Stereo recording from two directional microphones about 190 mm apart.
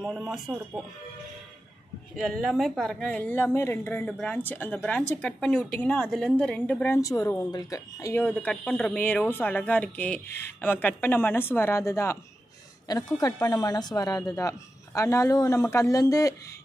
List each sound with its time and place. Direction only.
0.0 s speech: centre (ahead or behind)
2.1 s speech: centre (ahead or behind)